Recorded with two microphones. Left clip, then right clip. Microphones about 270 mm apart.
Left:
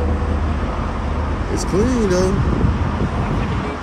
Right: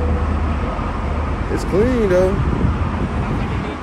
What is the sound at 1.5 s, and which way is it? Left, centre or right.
Speech, centre.